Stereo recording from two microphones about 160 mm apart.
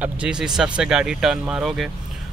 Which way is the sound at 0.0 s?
5° right (ahead or behind).